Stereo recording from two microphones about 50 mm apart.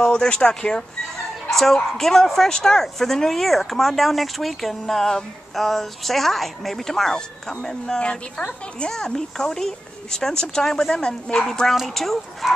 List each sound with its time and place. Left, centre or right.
0.0 s speech: centre
1.5 s bow-wow: centre
2.0 s speech: centre
8.9 s speech: centre